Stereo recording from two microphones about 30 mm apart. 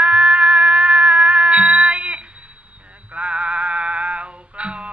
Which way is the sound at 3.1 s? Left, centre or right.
Right.